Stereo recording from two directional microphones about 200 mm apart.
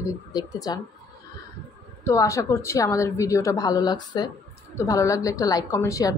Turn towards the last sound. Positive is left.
turn(degrees=15)  # may be behind; listen again after turning